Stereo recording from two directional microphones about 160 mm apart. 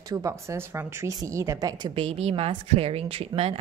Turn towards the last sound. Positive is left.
turn(degrees=-40)  # may be behind; listen again after turning